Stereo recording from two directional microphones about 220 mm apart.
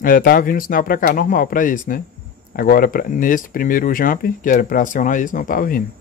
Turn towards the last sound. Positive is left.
turn(degrees=40)  # may be behind; listen again after turning